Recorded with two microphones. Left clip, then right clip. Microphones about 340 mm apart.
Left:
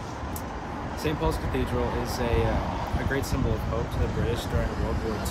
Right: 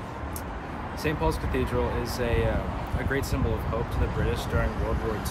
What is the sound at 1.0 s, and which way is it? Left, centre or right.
Speech, centre.